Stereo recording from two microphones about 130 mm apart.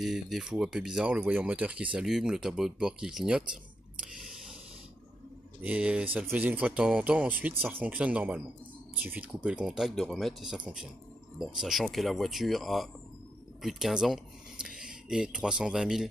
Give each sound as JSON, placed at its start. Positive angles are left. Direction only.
{"t": 0.0, "sound": "speech", "side_deg": -5}
{"t": 4.0, "sound": "a sound", "side_deg": -5}
{"t": 5.6, "sound": "speech", "side_deg": -10}